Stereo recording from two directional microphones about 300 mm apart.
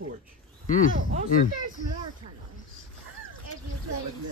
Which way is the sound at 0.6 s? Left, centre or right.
Left.